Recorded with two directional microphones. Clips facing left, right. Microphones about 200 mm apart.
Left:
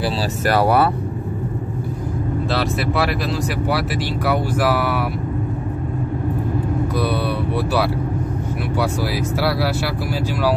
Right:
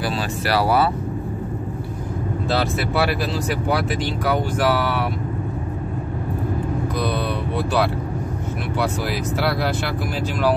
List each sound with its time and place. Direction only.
0.5 s speech: 55° left (ahead or behind)
4.3 s speech: 5° left (ahead or behind)